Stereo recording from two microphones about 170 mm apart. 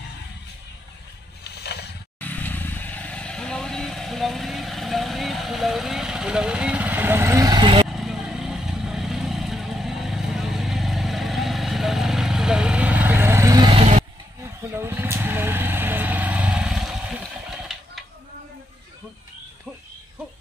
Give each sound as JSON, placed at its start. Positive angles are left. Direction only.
{"t": 1.6, "sound": "a sound", "side_deg": 70}
{"t": 2.1, "sound": "vehicle", "side_deg": 10}
{"t": 7.9, "sound": "vehicle", "side_deg": 0}
{"t": 13.7, "sound": "vehicle", "side_deg": -35}
{"t": 14.8, "sound": "vehicle", "side_deg": -15}